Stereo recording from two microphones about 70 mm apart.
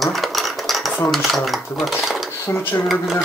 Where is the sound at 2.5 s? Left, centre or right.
Left.